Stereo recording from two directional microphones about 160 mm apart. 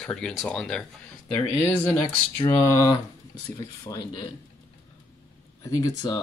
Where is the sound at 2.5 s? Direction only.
20° left (ahead or behind).